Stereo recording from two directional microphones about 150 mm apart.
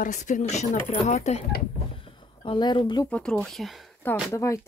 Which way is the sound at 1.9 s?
35° left (ahead or behind).